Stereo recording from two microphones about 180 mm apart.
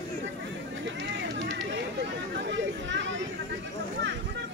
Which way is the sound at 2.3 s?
80° right.